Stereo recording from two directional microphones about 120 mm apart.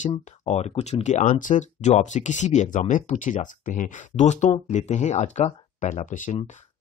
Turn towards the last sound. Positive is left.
turn(degrees=80)